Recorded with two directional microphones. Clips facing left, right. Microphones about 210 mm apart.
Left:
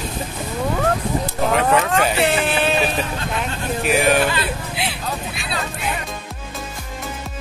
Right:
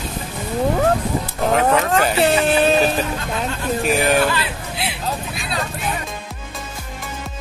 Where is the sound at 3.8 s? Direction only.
Centre (ahead or behind).